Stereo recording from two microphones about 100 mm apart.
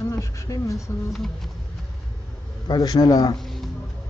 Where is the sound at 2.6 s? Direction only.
45° left (ahead or behind).